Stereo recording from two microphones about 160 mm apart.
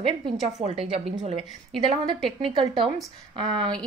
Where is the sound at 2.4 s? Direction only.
35° right (ahead or behind).